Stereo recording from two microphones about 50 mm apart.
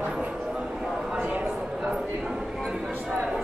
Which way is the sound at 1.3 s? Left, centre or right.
Right.